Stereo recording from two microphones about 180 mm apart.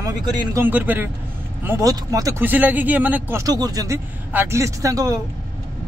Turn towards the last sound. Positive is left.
turn(degrees=-20)  # may be behind; listen again after turning